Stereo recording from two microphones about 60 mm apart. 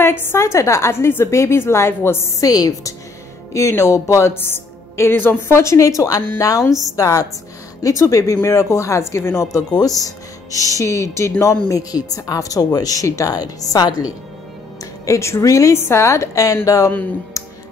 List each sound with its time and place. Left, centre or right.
0.0 s a woman's voice: left
0.4 s a woman's voice: left
2.4 s a woman's voice: left
3.5 s a woman's voice: left
9.8 s speech: left
15.0 s speech: left